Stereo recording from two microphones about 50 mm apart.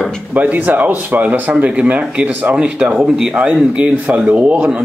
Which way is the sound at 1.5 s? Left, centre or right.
Right.